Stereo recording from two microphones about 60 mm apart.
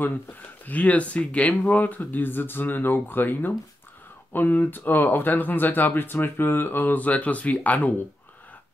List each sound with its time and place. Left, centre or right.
0.7 s speech: left